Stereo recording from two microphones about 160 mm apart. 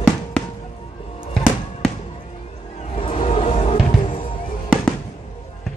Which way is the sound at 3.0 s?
35° left (ahead or behind).